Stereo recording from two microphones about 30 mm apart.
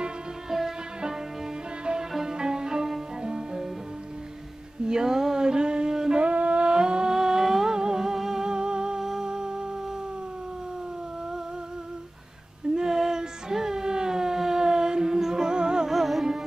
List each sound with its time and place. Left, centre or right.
0.5 s music: centre
2.1 s music: right
4.8 s mantra: right
6.3 s humming: right; by 7.7 s centre
7.7 s music: right
12.7 s music: centre
15.9 s carnatic music: centre